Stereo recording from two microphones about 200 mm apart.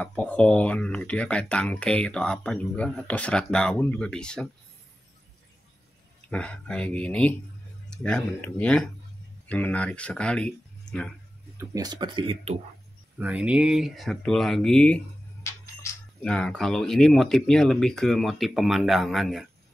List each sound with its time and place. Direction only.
0.0 s speech: 5° left (ahead or behind)
6.3 s speech: 5° left (ahead or behind)
11.5 s speech: 20° right (ahead or behind)
13.2 s speech: 5° right (ahead or behind)
16.2 s speech: 5° left (ahead or behind)